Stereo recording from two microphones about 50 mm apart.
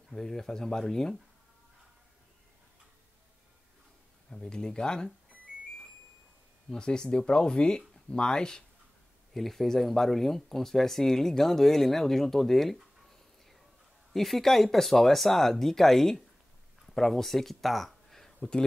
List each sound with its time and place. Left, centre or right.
0.1 s speech: centre
4.3 s speech: centre
6.7 s speech: centre
14.1 s speech: centre